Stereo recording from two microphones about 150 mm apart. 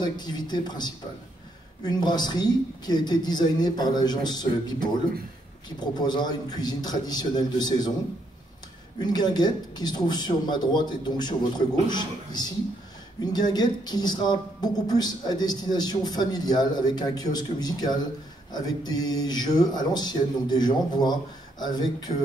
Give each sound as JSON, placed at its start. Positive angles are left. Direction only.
{"t": 0.0, "sound": "speech", "side_deg": 30}
{"t": 9.0, "sound": "speech", "side_deg": 30}